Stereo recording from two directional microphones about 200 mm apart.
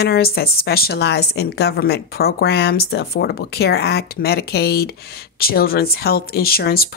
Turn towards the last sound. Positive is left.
turn(degrees=50)  # may be behind; listen again after turning